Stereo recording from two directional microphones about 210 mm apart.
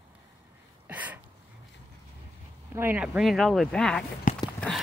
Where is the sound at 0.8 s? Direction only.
5° right (ahead or behind).